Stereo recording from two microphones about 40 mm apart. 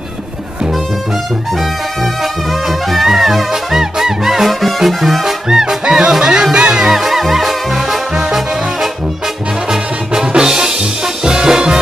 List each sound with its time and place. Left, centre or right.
2.7 s music: centre; by 6.9 s right
6.9 s music: centre
9.7 s music: centre